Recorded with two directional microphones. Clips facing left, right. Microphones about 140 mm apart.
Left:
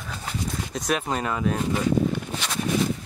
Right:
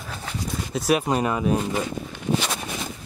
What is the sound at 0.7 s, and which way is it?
Speech, 10° right (ahead or behind).